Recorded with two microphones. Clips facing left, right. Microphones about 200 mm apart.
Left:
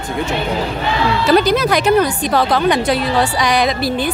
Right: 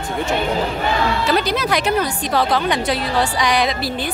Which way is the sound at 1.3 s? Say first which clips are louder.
Left 9 dB; 45° left (ahead or behind).